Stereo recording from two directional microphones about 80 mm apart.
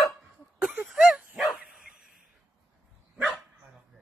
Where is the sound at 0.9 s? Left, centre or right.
Centre.